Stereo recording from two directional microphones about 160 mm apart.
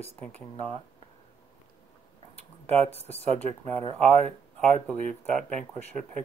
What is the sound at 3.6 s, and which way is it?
Speech, 45° right (ahead or behind).